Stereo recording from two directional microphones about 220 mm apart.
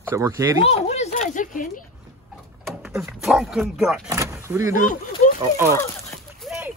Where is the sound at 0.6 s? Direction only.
30° left (ahead or behind).